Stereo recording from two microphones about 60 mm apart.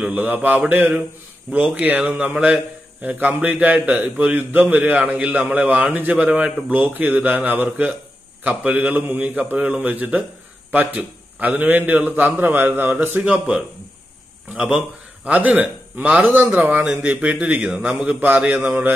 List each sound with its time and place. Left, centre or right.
0.1 s a man's voice: right
13.2 s a man's voice: centre
16.7 s speech: centre
17.0 s a man's voice: right